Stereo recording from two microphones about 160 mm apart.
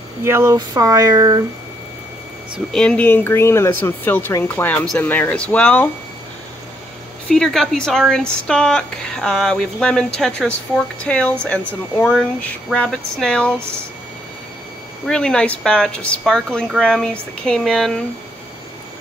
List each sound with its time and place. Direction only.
0.2 s speech: 15° right (ahead or behind)
2.7 s speech: 5° left (ahead or behind)
7.2 s speech: 5° left (ahead or behind)
15.0 s speech: 5° left (ahead or behind)